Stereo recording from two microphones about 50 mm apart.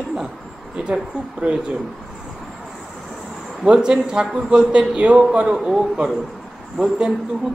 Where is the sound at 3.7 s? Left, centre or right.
Centre.